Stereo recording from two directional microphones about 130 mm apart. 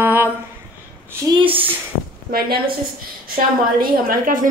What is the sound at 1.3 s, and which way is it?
Speech, 40° right (ahead or behind).